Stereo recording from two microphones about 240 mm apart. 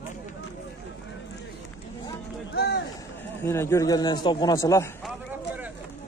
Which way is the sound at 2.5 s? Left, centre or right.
Left.